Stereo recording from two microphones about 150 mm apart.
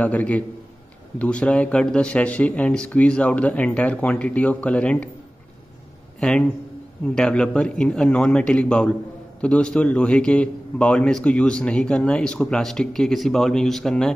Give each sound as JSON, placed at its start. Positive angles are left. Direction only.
{"t": 0.0, "sound": "speech", "side_deg": 10}
{"t": 6.1, "sound": "a man's voice", "side_deg": 5}